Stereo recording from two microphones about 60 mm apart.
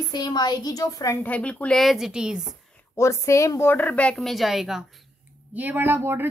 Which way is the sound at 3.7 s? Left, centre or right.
Left.